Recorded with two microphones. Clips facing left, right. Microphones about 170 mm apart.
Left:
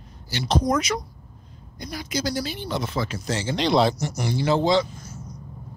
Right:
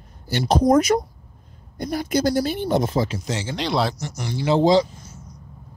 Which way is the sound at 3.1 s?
15° right (ahead or behind).